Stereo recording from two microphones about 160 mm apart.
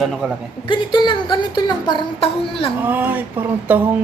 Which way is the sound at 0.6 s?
30° left (ahead or behind).